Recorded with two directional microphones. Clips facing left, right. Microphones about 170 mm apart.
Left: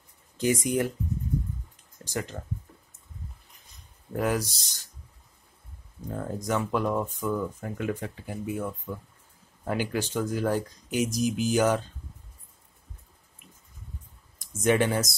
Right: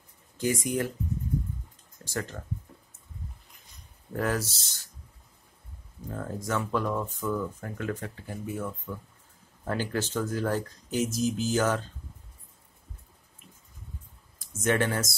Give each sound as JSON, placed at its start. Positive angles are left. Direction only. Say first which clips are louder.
{"t": 0.4, "sound": "speech", "louder": "left 3 dB", "side_deg": 20}
{"t": 2.0, "sound": "speech", "louder": "left 1 dB", "side_deg": 20}
{"t": 4.1, "sound": "speech", "louder": "left 2 dB", "side_deg": 15}
{"t": 6.0, "sound": "speech", "louder": "left 2 dB", "side_deg": 15}
{"t": 14.5, "sound": "speech", "louder": "left 3 dB", "side_deg": 15}